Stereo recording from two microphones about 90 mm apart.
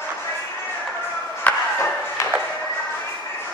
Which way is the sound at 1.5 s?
20° left (ahead or behind).